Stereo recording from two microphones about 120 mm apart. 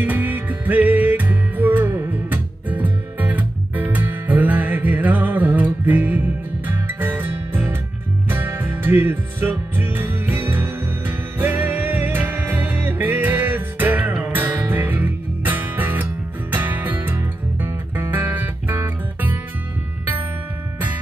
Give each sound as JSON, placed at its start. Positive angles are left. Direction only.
{"t": 0.0, "sound": "music", "side_deg": -15}